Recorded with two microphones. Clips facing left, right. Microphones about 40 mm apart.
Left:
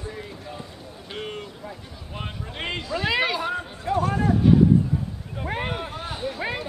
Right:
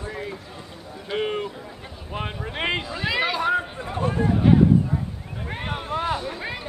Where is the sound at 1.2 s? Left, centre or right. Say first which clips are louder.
Right 8 dB; right.